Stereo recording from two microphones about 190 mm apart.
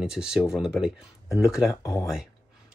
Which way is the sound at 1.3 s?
15° left (ahead or behind).